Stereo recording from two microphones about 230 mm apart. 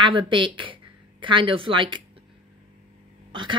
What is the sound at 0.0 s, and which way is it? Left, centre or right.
A woman's voice, right.